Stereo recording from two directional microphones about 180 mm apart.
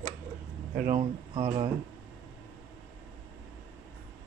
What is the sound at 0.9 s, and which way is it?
Speech, 30° right (ahead or behind).